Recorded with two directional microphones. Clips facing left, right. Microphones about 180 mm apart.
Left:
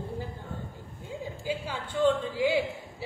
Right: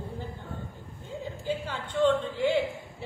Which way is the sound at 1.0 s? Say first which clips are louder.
Right 1 dB; 10° left (ahead or behind).